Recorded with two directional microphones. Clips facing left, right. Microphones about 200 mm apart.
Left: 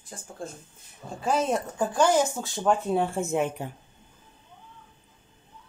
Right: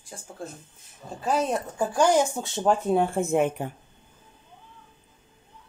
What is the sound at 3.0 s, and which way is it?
Speech, 55° right (ahead or behind).